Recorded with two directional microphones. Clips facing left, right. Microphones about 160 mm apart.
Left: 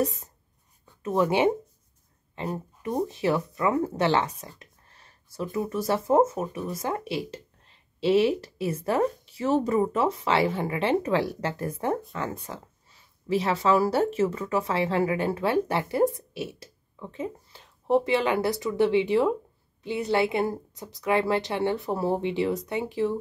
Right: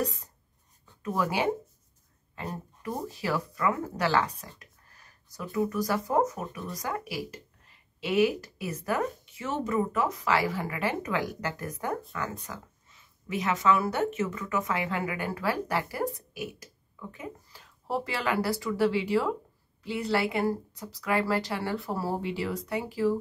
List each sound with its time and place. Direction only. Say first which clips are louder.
1.0 s speech: left 5 dB; 25° left (ahead or behind)